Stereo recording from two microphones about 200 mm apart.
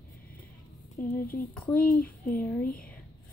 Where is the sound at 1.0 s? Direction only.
45° left (ahead or behind).